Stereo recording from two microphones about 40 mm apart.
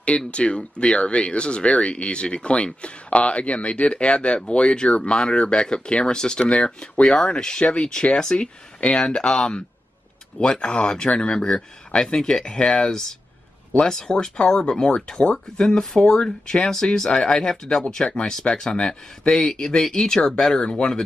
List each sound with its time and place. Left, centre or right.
0.3 s speech: left